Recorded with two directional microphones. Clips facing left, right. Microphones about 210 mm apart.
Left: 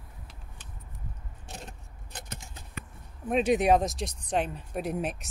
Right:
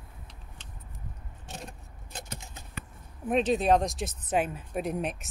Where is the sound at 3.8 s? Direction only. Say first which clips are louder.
Even; centre (ahead or behind).